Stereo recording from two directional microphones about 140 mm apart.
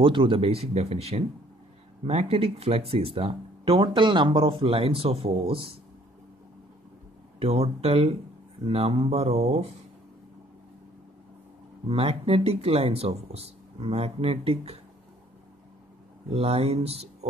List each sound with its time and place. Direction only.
0.0 s speech: 40° right (ahead or behind)
7.3 s speech: 45° right (ahead or behind)
11.9 s speech: 40° right (ahead or behind)
16.3 s speech: 45° right (ahead or behind)